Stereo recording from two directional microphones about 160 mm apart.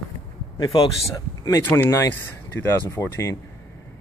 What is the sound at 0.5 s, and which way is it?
Speech, 30° left (ahead or behind).